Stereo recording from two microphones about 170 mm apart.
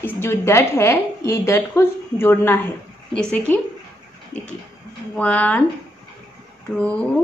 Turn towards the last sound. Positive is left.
turn(degrees=5)  # may be behind; listen again after turning